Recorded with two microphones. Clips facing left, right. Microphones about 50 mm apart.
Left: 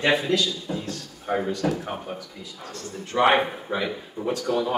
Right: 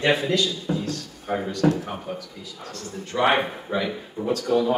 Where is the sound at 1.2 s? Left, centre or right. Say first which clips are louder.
Right 2 dB; centre.